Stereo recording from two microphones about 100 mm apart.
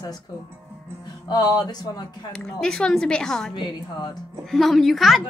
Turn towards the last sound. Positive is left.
turn(degrees=0)  # may be behind; listen again after turning